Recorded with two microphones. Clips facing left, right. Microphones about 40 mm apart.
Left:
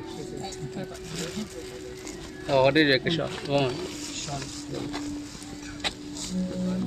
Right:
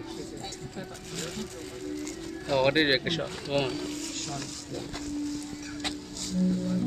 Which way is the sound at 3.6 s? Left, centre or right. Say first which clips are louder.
Left 1 dB; left.